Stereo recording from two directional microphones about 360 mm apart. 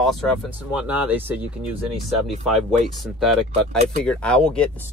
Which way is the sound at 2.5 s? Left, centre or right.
Centre.